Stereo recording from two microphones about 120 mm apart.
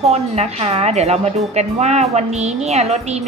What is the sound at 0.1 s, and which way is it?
A woman's voice, 60° right (ahead or behind).